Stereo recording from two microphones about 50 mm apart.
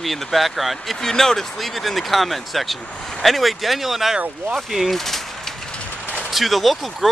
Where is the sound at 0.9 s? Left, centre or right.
Centre.